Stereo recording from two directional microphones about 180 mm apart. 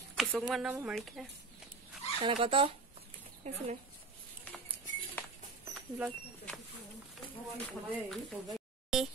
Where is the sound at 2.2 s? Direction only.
30° right (ahead or behind).